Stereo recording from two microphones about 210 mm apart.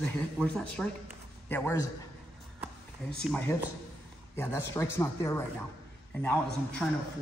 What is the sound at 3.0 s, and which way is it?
Speech, 5° left (ahead or behind).